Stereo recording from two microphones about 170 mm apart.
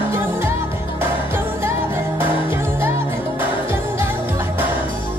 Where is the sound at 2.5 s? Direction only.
10° right (ahead or behind).